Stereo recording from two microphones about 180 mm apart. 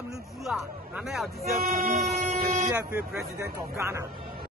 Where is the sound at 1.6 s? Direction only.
45° right (ahead or behind).